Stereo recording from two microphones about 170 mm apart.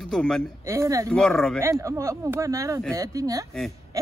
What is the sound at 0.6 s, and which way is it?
Speech, 15° right (ahead or behind).